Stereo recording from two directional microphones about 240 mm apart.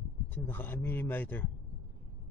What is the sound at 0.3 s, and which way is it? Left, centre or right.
A man's voice, centre.